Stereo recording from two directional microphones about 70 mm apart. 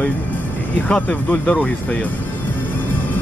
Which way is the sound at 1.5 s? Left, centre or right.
Centre.